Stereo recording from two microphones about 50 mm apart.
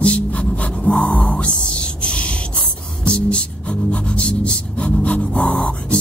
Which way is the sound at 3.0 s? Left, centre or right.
Left.